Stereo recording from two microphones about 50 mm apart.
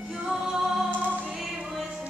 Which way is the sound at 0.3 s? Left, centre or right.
Centre.